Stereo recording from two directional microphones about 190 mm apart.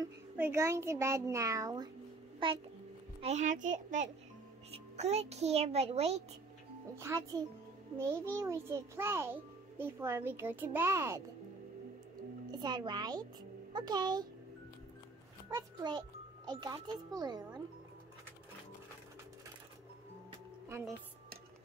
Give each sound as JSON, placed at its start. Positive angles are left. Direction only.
{"t": 0.0, "sound": "a child's voice", "side_deg": -15}
{"t": 3.2, "sound": "a child's voice", "side_deg": -35}
{"t": 7.0, "sound": "a child's voice", "side_deg": -15}
{"t": 12.4, "sound": "a child's voice", "side_deg": -20}
{"t": 15.5, "sound": "speech", "side_deg": -25}